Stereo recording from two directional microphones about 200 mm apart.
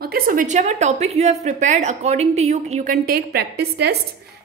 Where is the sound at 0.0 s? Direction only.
50° right (ahead or behind).